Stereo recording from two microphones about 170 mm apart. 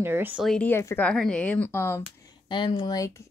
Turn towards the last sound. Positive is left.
turn(degrees=25)  # may be behind; listen again after turning